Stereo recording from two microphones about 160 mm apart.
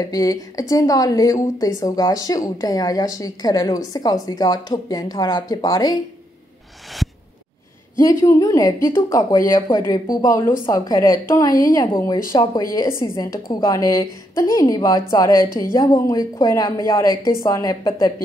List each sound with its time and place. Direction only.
0.0 s a woman's voice: 20° left (ahead or behind)
8.0 s a woman's voice: 20° left (ahead or behind)